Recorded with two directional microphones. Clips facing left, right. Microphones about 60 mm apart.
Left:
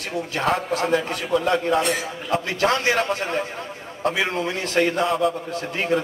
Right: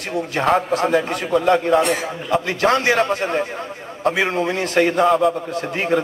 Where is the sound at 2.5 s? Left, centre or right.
Right.